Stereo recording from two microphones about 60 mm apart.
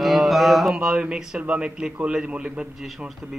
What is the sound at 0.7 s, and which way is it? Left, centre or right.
A man's voice, centre.